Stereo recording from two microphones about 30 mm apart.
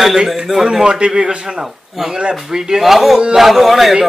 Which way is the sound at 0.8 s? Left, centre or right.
Right.